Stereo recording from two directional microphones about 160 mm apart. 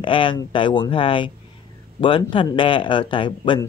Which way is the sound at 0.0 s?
30° left (ahead or behind).